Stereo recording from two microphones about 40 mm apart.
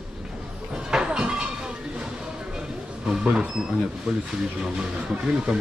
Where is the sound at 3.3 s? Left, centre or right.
Right.